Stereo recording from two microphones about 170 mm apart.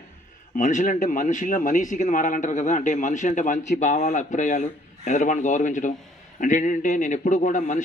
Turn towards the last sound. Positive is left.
turn(degrees=45)  # may be behind; listen again after turning